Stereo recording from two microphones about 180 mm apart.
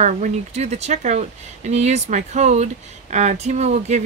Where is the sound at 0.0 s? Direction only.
40° right (ahead or behind).